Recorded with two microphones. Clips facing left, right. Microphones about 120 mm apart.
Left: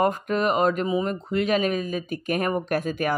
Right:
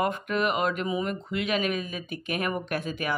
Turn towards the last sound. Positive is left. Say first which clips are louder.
# left 5 dB
turn(degrees=45)  # may be behind; listen again after turning